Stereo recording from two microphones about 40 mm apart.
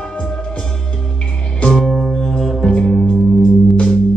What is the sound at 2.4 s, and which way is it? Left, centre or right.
Music, centre.